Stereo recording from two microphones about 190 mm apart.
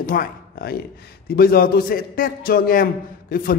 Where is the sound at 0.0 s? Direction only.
50° left (ahead or behind).